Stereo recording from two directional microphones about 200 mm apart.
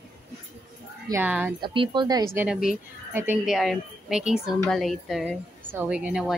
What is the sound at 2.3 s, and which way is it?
A woman's voice, 5° right (ahead or behind).